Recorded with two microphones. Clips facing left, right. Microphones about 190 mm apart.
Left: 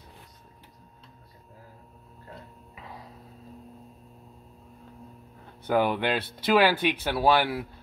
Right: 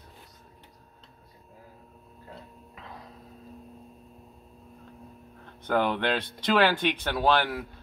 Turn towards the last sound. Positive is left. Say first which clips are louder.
# left 2 dB
turn(degrees=10)  # may be behind; listen again after turning